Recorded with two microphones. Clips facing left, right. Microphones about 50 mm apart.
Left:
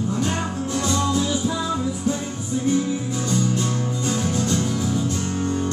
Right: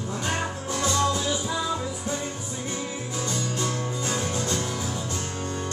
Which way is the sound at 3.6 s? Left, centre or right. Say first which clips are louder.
Left 4 dB; right.